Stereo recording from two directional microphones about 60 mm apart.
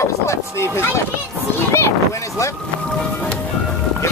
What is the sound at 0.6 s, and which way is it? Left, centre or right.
Speech, left.